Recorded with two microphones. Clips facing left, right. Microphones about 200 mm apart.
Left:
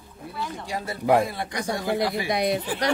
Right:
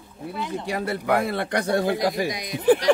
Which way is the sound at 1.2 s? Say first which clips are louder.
Right 5 dB; 65° right (ahead or behind).